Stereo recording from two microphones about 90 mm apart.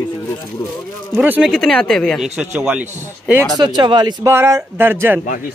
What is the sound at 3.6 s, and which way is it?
Speech, 55° right (ahead or behind).